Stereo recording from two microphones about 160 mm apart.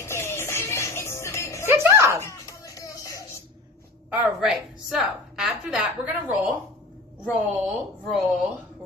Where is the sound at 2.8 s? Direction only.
20° left (ahead or behind).